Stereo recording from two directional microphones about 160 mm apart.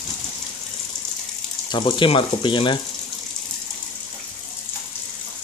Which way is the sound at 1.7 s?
30° left (ahead or behind).